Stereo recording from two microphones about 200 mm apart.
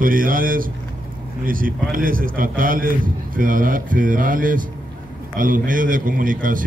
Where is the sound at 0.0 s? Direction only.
45° right (ahead or behind).